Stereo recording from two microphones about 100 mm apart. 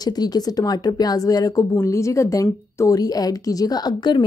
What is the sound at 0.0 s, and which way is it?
A woman's voice, 40° left (ahead or behind).